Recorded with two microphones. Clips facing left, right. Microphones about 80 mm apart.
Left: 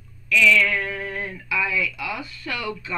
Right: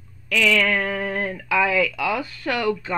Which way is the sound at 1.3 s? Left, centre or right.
Right.